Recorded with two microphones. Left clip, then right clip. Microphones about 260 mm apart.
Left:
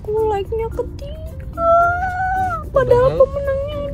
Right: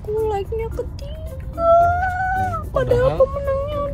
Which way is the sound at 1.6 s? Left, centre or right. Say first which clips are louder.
Even; centre.